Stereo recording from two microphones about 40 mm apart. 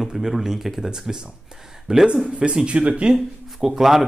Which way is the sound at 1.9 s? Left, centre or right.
Right.